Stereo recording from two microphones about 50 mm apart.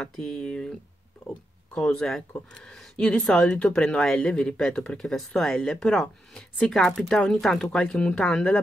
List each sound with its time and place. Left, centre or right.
0.2 s speech: centre
1.8 s speech: centre